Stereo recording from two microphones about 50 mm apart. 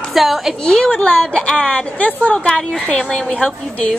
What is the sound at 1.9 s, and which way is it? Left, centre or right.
Speech, left.